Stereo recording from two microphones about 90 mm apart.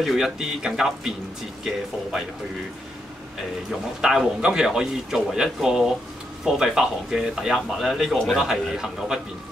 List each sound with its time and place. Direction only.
0.0 s speech: 5° right (ahead or behind)
4.0 s speech: 5° right (ahead or behind)